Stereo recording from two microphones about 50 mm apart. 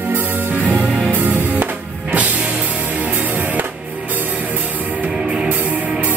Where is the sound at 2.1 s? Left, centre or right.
Right.